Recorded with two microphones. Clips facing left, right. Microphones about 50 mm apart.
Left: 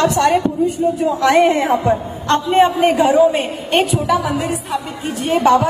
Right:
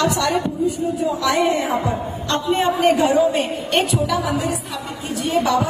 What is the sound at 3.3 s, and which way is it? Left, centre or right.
Speech, left.